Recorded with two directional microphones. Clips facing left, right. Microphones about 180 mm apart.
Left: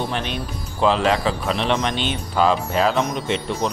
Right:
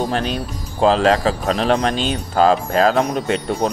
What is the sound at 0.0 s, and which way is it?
Speech, 40° right (ahead or behind).